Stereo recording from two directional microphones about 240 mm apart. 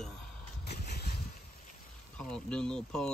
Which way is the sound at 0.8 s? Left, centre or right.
Left.